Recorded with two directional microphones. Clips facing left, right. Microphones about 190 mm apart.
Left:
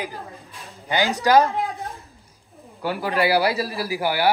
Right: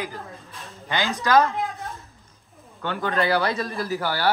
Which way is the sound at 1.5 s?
30° left (ahead or behind).